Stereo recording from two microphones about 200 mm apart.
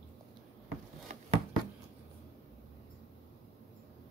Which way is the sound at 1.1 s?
35° right (ahead or behind).